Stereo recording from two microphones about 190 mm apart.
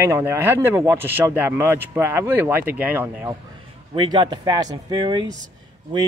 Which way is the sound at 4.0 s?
20° right (ahead or behind).